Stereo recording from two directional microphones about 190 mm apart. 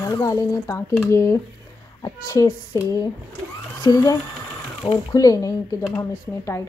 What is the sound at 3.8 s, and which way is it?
Speech, 20° left (ahead or behind).